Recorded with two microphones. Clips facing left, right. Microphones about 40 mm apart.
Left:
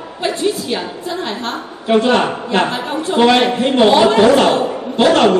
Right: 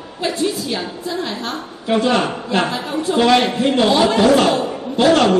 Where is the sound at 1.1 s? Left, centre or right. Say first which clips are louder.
Left 1 dB; left.